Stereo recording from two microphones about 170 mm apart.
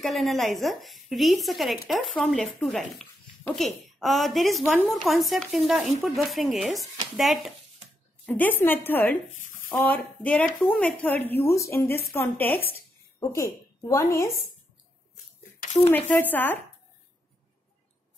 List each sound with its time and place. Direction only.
0.0 s speech: centre (ahead or behind)
8.3 s a woman's voice: 10° left (ahead or behind)
9.7 s a sound: 5° left (ahead or behind)
10.6 s a woman's voice: 5° left (ahead or behind)
15.6 s a sound: 40° left (ahead or behind)
15.9 s a woman's voice: 10° left (ahead or behind)